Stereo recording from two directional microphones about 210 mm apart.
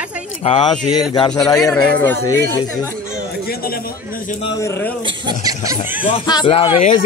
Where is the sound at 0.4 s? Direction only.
25° left (ahead or behind).